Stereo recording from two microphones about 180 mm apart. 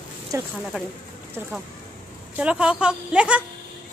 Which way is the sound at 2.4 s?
5° right (ahead or behind).